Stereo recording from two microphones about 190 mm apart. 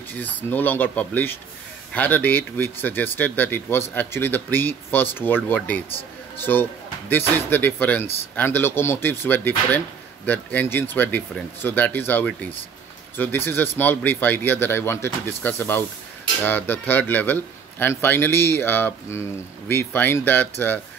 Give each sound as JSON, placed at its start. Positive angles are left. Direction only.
{"t": 0.2, "sound": "speech", "side_deg": 10}